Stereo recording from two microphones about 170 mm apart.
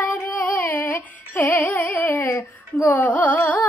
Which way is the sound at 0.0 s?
10° left (ahead or behind).